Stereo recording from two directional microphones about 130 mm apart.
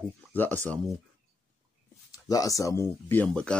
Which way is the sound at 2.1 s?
25° left (ahead or behind).